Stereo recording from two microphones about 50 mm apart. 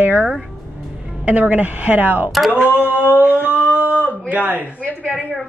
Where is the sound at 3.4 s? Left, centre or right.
Right.